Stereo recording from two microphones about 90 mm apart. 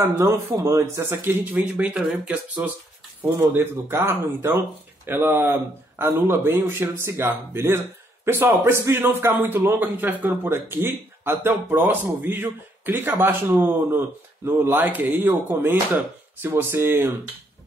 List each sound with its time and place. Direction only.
0.3 s speech: 40° right (ahead or behind)
1.2 s speech: 15° right (ahead or behind)
3.3 s speech: 25° right (ahead or behind)